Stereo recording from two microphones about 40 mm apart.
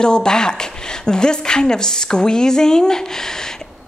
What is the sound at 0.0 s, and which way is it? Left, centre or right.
A woman's voice, centre.